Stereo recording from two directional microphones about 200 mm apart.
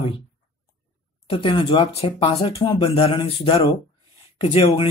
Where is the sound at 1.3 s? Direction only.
25° left (ahead or behind).